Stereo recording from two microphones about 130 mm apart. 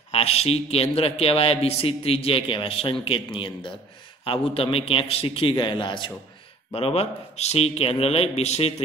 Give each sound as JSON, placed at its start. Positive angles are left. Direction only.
{"t": 0.1, "sound": "a man's voice", "side_deg": 50}
{"t": 6.7, "sound": "a man's voice", "side_deg": 50}